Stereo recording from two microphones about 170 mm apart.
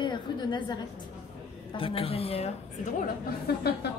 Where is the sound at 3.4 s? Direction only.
70° left (ahead or behind).